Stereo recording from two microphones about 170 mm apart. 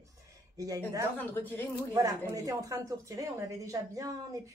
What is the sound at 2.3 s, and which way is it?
Speech, 20° right (ahead or behind).